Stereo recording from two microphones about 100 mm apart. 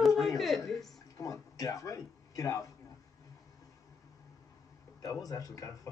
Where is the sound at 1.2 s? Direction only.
35° left (ahead or behind).